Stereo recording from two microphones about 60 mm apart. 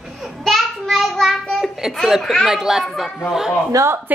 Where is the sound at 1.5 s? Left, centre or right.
Centre.